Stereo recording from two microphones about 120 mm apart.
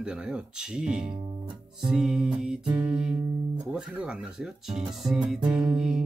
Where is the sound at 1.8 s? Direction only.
5° right (ahead or behind).